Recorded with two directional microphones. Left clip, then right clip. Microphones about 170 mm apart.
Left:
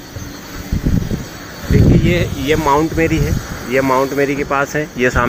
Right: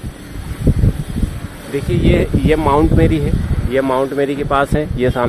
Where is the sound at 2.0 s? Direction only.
25° right (ahead or behind).